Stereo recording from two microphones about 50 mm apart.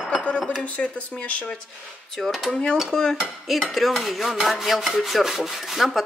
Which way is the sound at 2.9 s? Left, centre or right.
Centre.